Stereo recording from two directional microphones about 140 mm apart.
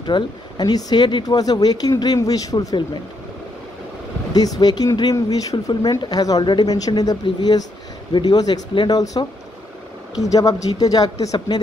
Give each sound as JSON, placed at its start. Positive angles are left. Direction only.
{"t": 0.0, "sound": "speech", "side_deg": 30}
{"t": 4.3, "sound": "speech", "side_deg": 30}
{"t": 10.2, "sound": "speech", "side_deg": 25}